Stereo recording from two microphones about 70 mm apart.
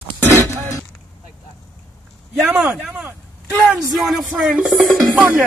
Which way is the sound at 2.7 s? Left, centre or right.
Centre.